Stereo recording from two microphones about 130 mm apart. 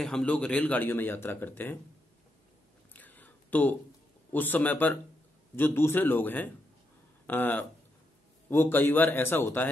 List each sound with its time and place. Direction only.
0.0 s a man's voice: 5° left (ahead or behind)
2.9 s a sound: 15° left (ahead or behind)
4.3 s a man's voice: 15° left (ahead or behind)